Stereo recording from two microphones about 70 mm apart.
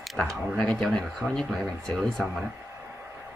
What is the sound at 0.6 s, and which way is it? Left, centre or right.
Speech, centre.